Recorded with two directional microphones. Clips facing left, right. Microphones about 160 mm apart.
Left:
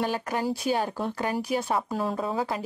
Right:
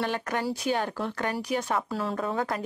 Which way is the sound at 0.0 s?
10° left (ahead or behind).